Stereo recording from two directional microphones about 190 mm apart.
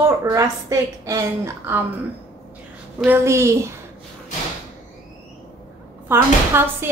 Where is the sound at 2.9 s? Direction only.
10° right (ahead or behind).